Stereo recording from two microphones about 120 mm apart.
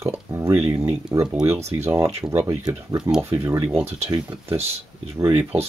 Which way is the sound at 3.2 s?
25° right (ahead or behind).